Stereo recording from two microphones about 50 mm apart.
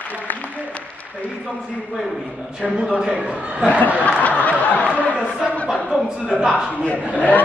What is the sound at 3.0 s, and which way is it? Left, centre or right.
Speech, centre.